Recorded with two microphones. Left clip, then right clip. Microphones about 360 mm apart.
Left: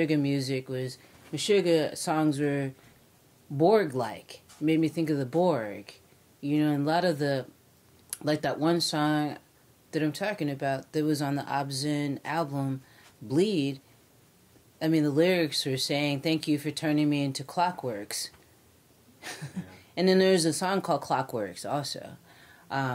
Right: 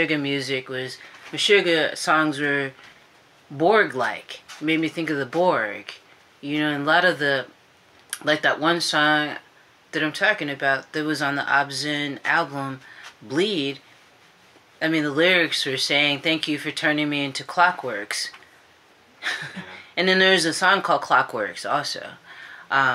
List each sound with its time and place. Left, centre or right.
0.0 s speech: left
14.8 s speech: left